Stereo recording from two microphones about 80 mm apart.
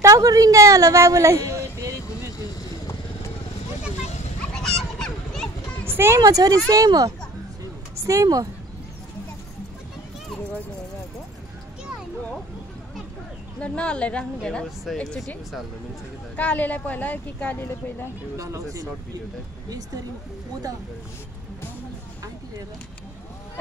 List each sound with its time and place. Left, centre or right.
0.0 s a woman's voice: right
4.5 s fowl: centre
5.9 s a sound: right
6.1 s speech: right
13.6 s a woman's voice: centre
16.3 s speech: centre
18.4 s speech: right